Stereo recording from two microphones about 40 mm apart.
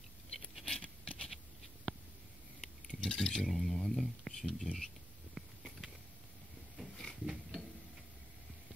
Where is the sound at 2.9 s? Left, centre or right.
Left.